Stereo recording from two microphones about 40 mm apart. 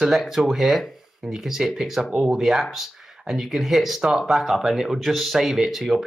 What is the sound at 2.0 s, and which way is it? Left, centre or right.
Speech, right.